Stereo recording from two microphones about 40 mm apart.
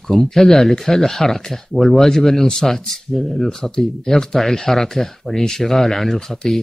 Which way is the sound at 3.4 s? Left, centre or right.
Centre.